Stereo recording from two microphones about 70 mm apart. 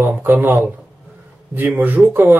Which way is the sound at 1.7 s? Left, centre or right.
Right.